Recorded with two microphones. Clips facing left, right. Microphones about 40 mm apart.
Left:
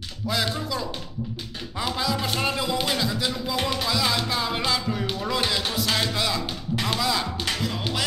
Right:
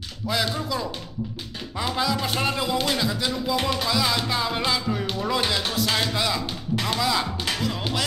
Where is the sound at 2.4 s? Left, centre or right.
Right.